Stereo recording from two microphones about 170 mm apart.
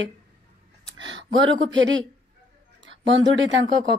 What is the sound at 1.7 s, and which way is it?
Speech, 90° right.